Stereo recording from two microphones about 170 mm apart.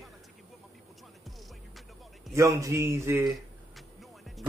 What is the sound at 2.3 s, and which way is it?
Speech, 20° right (ahead or behind).